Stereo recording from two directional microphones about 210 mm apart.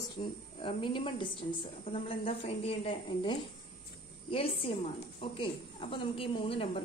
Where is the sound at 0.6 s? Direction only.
25° left (ahead or behind).